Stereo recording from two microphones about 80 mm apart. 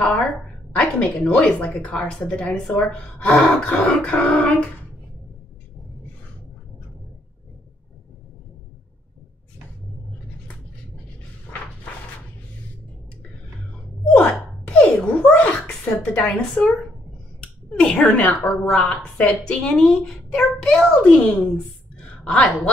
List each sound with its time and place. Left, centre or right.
0.7 s a woman's voice: centre
14.1 s a sound: centre
17.7 s a woman's voice: centre